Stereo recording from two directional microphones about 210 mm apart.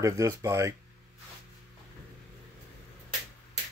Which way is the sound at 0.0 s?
15° right (ahead or behind).